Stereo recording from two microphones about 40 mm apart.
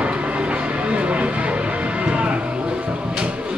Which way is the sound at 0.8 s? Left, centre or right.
Right.